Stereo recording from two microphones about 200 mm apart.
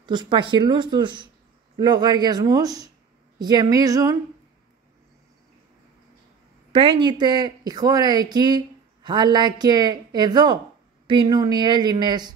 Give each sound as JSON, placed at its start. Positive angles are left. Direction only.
{"t": 0.0, "sound": "a woman's voice", "side_deg": -20}
{"t": 6.7, "sound": "speech", "side_deg": -25}